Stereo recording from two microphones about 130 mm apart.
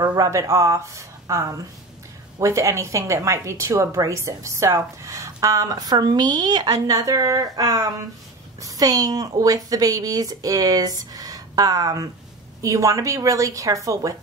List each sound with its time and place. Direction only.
0.0 s a woman's voice: 30° right (ahead or behind)